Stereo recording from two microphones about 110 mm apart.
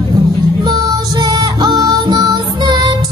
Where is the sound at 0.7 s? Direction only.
40° right (ahead or behind).